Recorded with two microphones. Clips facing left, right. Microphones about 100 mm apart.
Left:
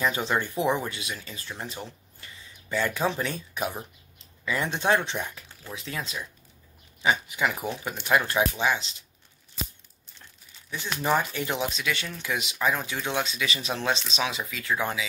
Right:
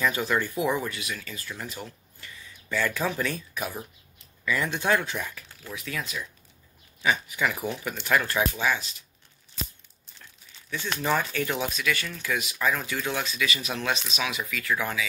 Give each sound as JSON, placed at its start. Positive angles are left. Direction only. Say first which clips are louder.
{"t": 0.0, "sound": "speech", "louder": "even", "side_deg": 25}
{"t": 11.0, "sound": "speech", "louder": "left 1 dB", "side_deg": 20}